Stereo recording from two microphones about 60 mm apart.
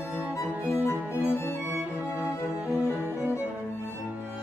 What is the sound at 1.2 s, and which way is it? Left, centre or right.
Music, left.